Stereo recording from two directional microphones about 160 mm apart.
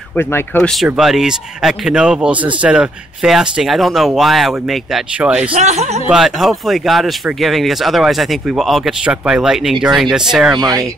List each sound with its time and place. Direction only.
0.5 s speech: 15° left (ahead or behind)
0.8 s speech: centre (ahead or behind)
5.5 s speech: 45° right (ahead or behind)
6.0 s speech: centre (ahead or behind)
10.5 s speech: 25° right (ahead or behind)